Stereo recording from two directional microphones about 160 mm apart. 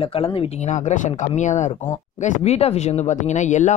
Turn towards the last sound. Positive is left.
turn(degrees=50)  # may be behind; listen again after turning